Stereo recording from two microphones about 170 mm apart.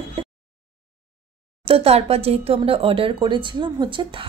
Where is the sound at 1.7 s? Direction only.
35° right (ahead or behind).